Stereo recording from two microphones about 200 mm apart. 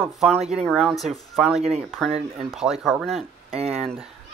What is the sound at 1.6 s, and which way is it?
Speech, 35° right (ahead or behind).